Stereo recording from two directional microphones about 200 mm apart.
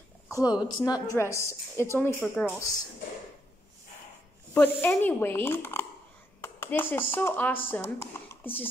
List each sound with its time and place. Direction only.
0.3 s a woman's voice: 20° left (ahead or behind)
4.6 s a woman's voice: 10° left (ahead or behind)